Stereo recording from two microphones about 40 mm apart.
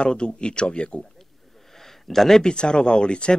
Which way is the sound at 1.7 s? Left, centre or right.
Centre.